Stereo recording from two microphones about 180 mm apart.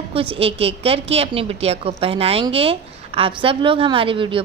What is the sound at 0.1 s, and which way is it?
A woman's voice, 30° right (ahead or behind).